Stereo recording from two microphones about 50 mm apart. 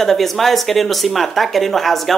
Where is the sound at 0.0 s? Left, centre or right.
Centre.